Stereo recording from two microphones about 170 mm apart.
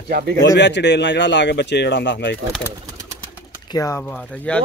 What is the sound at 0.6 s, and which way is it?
Speech, 90° left.